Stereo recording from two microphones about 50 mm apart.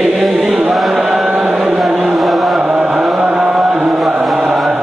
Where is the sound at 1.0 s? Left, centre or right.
Centre.